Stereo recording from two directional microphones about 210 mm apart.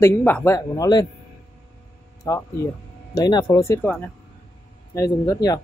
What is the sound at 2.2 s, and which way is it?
A woman's voice, 15° left (ahead or behind).